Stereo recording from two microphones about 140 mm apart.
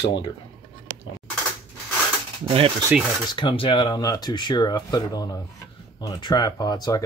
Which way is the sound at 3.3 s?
35° left (ahead or behind).